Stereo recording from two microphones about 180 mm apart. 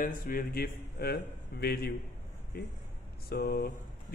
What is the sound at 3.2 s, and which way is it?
Speech, 60° left (ahead or behind).